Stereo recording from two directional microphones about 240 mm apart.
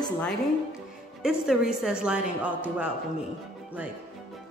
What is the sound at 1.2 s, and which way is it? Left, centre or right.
A woman's voice, centre.